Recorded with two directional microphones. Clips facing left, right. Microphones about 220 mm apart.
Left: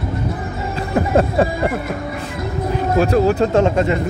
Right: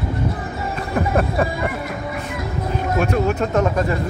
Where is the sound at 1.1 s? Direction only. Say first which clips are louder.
Left 6 dB; 25° left (ahead or behind).